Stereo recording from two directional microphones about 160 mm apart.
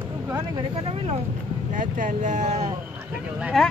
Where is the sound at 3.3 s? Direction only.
Centre (ahead or behind).